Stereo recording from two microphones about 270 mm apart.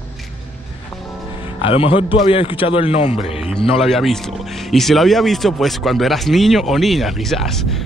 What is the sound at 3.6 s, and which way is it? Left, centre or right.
Speech, centre.